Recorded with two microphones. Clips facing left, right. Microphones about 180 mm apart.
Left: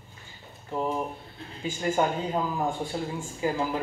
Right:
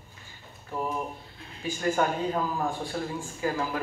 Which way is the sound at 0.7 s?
20° left (ahead or behind).